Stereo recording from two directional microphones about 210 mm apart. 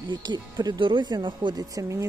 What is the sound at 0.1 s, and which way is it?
Speech, 20° right (ahead or behind).